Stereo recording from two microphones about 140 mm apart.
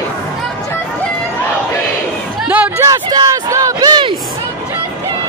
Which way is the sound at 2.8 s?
30° right (ahead or behind).